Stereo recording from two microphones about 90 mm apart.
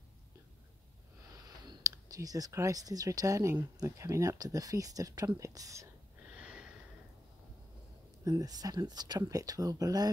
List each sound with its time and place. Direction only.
1.6 s speech: 45° right (ahead or behind)
6.3 s snort: 10° right (ahead or behind)
8.2 s speech: 40° right (ahead or behind)